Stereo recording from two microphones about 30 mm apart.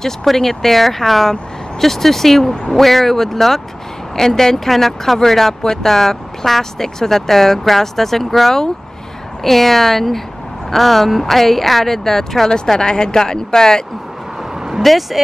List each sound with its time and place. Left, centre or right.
0.0 s speech: centre
5.6 s speech: left
5.9 s speech: centre
12.8 s speech: left
14.8 s speech: centre